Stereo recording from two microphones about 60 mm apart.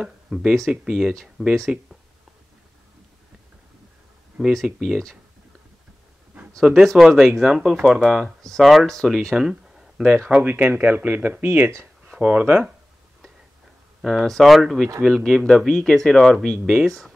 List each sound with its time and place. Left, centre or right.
0.0 s speech: centre
4.6 s speech: centre
6.6 s speech: centre
10.4 s speech: right
12.1 s speech: centre
14.2 s speech: centre